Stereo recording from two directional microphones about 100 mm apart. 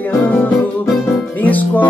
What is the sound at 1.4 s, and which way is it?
Music, 15° left (ahead or behind).